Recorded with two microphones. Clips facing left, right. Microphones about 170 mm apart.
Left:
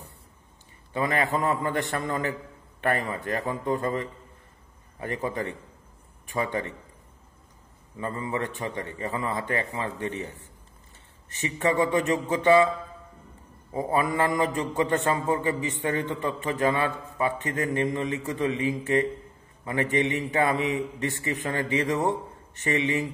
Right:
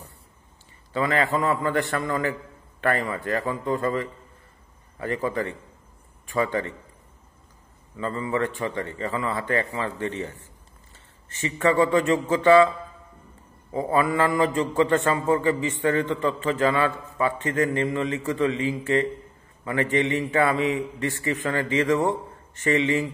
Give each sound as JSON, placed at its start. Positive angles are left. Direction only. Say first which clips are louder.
{"t": 0.9, "sound": "a man's voice", "louder": "right 2 dB", "side_deg": 20}
{"t": 8.0, "sound": "a man's voice", "louder": "right 4 dB", "side_deg": 15}
{"t": 13.9, "sound": "a man's voice", "louder": "right 3 dB", "side_deg": 15}